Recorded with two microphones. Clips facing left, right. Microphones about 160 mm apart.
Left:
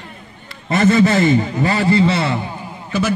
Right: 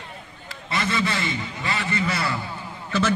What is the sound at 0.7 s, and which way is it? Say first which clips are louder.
A man's voice: left 12 dB; 45° left (ahead or behind).